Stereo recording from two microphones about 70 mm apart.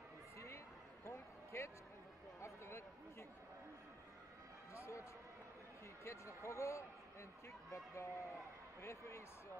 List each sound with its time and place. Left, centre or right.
1.0 s a sound: left
4.7 s speech: left
6.0 s a man's voice: left